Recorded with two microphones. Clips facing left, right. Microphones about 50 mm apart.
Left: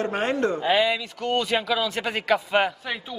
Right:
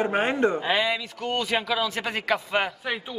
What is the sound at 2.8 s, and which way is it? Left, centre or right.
Speech, centre.